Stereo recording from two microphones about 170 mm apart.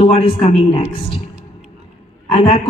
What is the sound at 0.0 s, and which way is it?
Speech, 35° left (ahead or behind).